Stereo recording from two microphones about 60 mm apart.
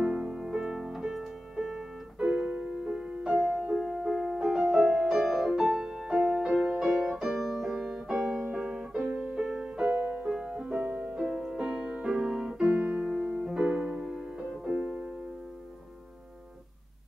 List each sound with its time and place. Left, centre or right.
0.0 s music: centre
6.8 s music: centre
7.1 s piano: centre
7.3 s music: centre
12.6 s piano: right
13.4 s music: centre